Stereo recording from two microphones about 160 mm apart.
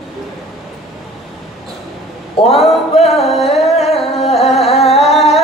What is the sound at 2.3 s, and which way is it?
Speech, 40° left (ahead or behind).